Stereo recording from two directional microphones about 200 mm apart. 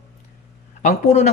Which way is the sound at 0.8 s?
35° left (ahead or behind).